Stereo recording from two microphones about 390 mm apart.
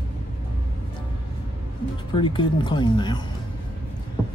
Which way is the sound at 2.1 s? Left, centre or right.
Centre.